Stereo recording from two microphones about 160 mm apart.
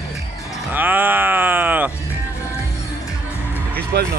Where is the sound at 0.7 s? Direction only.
10° right (ahead or behind).